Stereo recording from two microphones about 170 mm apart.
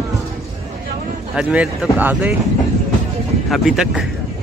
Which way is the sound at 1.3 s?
5° right (ahead or behind).